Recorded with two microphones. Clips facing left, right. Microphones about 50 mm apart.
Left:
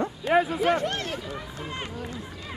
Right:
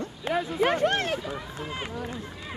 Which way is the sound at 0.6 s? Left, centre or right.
Right.